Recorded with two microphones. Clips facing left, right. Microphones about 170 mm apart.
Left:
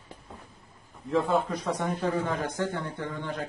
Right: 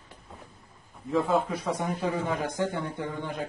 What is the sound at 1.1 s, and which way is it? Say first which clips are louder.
A man's voice: even; 5° right (ahead or behind).